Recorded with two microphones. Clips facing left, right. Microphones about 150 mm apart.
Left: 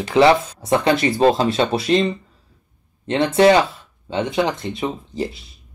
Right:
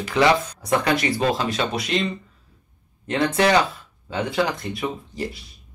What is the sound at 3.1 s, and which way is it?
Speech, 25° left (ahead or behind).